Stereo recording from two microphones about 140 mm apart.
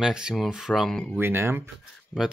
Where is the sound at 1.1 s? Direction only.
15° right (ahead or behind).